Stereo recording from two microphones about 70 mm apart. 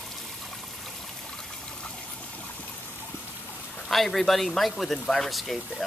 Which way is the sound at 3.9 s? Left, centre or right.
Centre.